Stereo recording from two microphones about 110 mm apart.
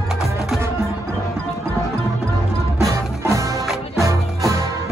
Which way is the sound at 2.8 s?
30° right (ahead or behind).